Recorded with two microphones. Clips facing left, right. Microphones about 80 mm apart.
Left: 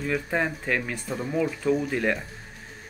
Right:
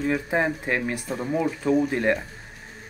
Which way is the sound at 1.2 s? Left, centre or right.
Right.